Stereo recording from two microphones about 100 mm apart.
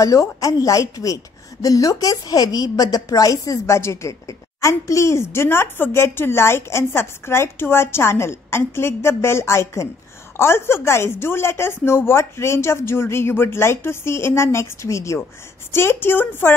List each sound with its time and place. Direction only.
0.0 s a woman's voice: 35° left (ahead or behind)